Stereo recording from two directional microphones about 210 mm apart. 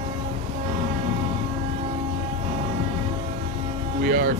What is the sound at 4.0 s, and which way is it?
Music, 40° right (ahead or behind).